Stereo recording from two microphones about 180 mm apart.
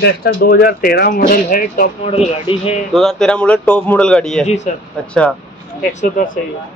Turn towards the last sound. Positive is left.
turn(degrees=50)  # may be behind; listen again after turning